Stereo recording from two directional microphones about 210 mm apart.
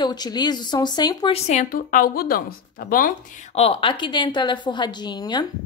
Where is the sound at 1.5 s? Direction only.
40° left (ahead or behind); by 5.5 s 20° left (ahead or behind).